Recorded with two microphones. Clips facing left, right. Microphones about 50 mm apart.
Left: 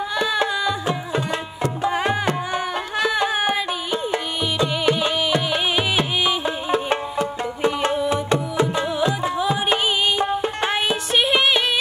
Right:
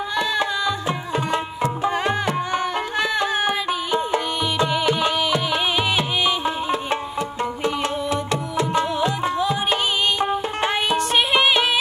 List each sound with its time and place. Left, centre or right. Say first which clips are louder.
0.1 s music: even; centre
1.3 s tabla: right 2 dB; right
1.9 s tabla: left 2 dB; centre
2.6 s music: even; centre
4.8 s music: even; centre
6.7 s music: left 2 dB; left
9.5 s music: left 1 dB; centre
10.6 s music: right 1 dB; centre